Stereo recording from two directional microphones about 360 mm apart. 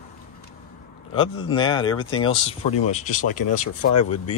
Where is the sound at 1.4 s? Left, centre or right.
Centre.